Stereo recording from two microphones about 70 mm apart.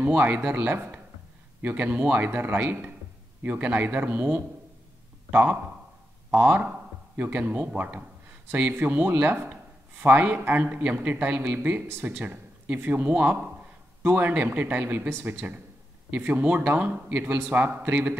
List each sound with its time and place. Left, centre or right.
0.0 s speech: right